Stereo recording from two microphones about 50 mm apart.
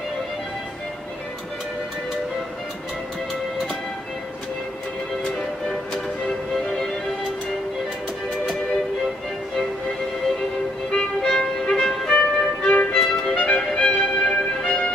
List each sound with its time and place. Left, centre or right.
6.6 s music: centre
10.9 s music: centre
12.1 s music: left
12.9 s music: centre